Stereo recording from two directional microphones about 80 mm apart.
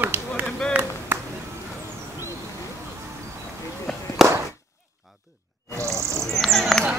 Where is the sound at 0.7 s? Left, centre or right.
Centre.